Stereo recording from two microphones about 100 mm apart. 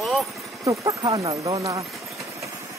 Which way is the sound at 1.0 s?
40° right (ahead or behind).